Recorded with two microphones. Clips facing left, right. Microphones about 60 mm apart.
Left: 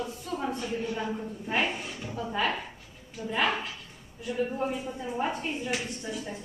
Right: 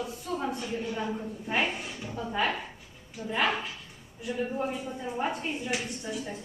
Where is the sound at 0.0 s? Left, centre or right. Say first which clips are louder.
Even; centre.